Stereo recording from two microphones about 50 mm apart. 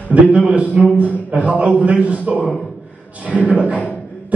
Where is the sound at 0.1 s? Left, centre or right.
Right.